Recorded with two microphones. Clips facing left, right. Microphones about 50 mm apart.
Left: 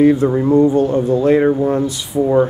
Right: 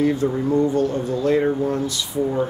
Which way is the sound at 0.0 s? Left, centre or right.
Left.